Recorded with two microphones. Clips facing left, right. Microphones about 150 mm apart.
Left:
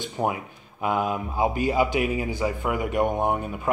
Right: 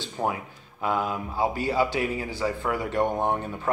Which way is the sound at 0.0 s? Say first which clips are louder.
Left 2 dB; 15° left (ahead or behind).